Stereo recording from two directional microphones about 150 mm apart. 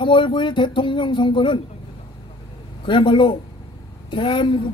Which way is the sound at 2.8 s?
35° left (ahead or behind).